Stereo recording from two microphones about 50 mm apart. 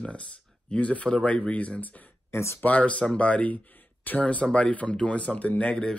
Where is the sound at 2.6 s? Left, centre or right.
Left.